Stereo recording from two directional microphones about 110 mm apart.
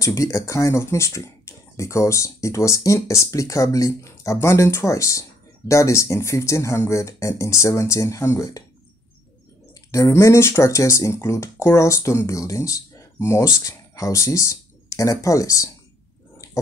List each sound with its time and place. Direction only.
0.0 s speech: 30° left (ahead or behind)
9.8 s speech: 30° left (ahead or behind)